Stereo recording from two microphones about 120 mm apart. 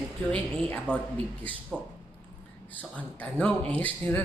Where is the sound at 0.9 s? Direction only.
10° left (ahead or behind).